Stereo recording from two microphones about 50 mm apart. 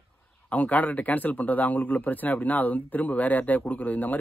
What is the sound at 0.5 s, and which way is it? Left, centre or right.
Speech, left.